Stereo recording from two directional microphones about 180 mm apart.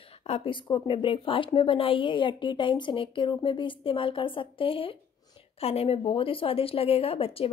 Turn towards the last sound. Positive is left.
turn(degrees=30)  # may be behind; listen again after turning